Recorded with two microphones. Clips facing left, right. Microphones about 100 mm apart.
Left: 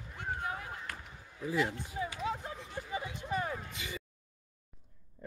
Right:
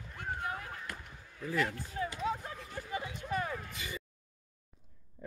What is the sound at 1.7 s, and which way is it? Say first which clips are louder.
Run: even; 15° left (ahead or behind).